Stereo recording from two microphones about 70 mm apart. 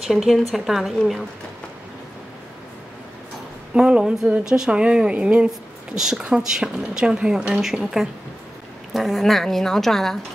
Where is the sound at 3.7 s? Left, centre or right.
Centre.